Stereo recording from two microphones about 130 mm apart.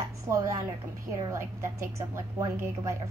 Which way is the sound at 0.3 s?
25° right (ahead or behind).